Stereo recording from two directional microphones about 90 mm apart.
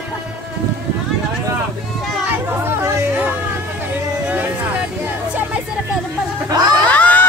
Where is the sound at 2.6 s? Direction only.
25° right (ahead or behind).